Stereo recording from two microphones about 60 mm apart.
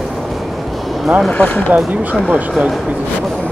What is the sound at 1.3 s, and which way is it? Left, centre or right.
Speech, left.